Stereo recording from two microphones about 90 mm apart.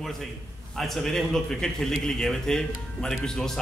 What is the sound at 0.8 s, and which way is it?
A man's voice, 5° left (ahead or behind).